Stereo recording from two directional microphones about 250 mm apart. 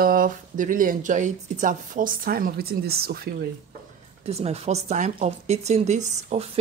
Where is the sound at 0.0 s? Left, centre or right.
Right.